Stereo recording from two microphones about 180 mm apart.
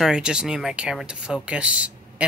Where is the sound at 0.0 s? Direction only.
5° right (ahead or behind).